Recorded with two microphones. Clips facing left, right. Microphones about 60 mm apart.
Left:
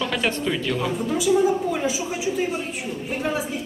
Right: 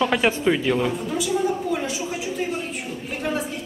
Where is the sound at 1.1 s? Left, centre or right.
Centre.